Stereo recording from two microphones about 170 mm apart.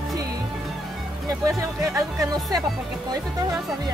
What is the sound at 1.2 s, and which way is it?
Speech, 15° right (ahead or behind).